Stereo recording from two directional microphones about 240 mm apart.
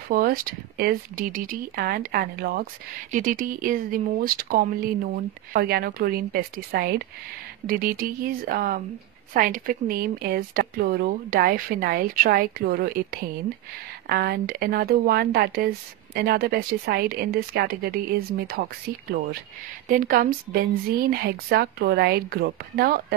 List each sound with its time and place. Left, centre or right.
0.1 s speech: right
19.9 s speech: right